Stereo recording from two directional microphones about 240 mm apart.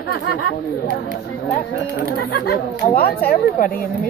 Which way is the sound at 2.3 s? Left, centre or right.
Left.